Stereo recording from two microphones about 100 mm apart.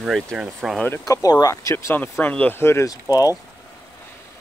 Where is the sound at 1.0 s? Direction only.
35° left (ahead or behind).